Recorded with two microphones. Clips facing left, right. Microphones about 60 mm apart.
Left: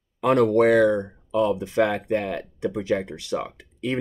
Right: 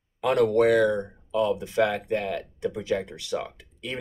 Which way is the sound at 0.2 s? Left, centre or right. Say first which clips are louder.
Left 3 dB; left.